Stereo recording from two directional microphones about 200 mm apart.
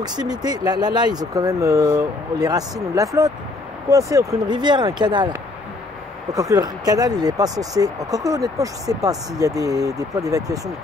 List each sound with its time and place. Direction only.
0.0 s speech: 20° right (ahead or behind)